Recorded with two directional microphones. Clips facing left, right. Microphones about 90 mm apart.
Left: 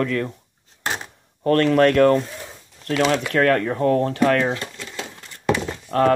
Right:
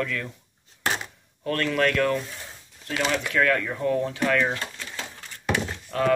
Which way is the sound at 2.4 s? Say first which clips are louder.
Left 5 dB; 60° left (ahead or behind).